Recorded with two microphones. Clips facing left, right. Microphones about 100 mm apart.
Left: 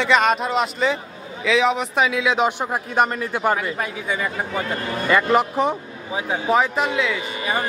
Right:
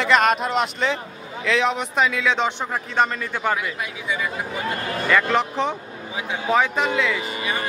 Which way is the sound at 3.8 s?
45° left (ahead or behind).